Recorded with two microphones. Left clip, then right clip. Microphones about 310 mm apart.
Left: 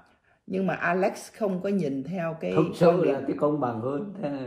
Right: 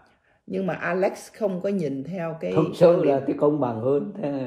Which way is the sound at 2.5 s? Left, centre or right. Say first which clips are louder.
Right 4 dB; right.